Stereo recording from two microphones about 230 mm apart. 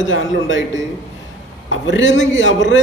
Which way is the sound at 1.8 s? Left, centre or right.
Left.